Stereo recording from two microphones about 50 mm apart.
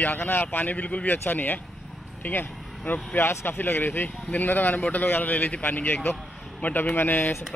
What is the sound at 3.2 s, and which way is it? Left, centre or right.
Speech, left.